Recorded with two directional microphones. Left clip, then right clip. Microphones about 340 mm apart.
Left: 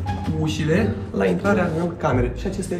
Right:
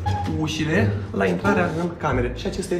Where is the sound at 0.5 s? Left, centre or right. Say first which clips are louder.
Left 2 dB; centre.